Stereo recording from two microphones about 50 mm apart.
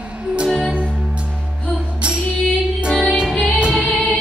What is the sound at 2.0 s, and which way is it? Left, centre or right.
Music, right.